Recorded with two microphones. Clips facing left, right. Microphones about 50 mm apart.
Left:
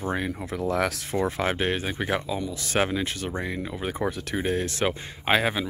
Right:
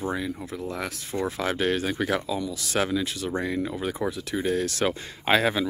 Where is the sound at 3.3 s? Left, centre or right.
Centre.